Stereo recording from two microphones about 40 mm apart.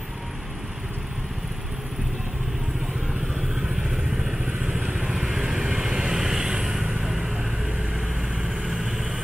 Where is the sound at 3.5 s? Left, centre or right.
Centre.